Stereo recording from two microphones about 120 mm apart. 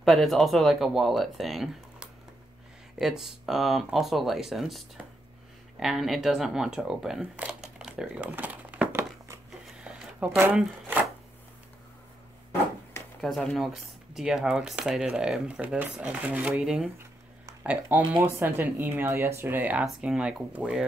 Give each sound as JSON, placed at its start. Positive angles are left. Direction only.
{"t": 0.0, "sound": "speech", "side_deg": 0}
{"t": 9.7, "sound": "a sound", "side_deg": -10}
{"t": 13.2, "sound": "speech", "side_deg": 5}